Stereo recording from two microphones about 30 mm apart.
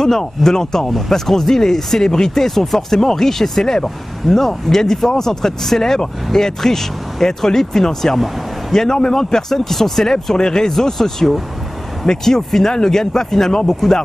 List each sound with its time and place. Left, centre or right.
0.0 s speech: centre
0.8 s speech: centre
1.1 s speech: centre
10.3 s speech: left